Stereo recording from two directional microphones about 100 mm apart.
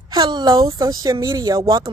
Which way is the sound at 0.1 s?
45° right (ahead or behind).